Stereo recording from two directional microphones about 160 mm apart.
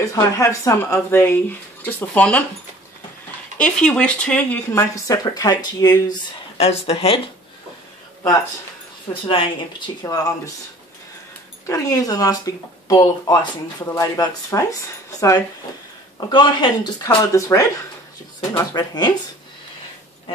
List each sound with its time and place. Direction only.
0.0 s speech: 20° left (ahead or behind)
3.5 s speech: 5° left (ahead or behind); by 6.1 s 25° left (ahead or behind)
6.6 s speech: 40° left (ahead or behind)
9.1 s speech: 35° left (ahead or behind)
10.0 s speech: 20° left (ahead or behind)
11.6 s speech: 20° left (ahead or behind)